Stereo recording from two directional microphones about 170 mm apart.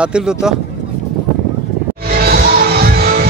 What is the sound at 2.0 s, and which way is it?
Music, 65° right (ahead or behind).